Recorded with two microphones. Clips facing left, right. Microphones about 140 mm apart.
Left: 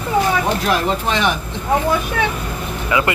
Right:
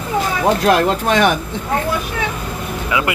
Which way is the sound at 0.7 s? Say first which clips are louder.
Right 4 dB; 55° right (ahead or behind).